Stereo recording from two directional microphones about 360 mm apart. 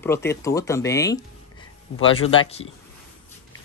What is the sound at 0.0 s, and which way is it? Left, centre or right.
Speech, centre.